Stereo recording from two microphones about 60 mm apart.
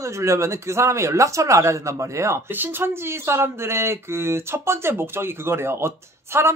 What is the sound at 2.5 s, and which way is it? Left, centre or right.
Speech, right.